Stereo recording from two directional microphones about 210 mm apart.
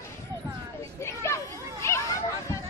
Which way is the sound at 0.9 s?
15° left (ahead or behind).